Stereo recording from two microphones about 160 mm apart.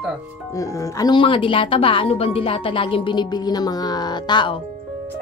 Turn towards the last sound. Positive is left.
turn(degrees=30)  # may be behind; listen again after turning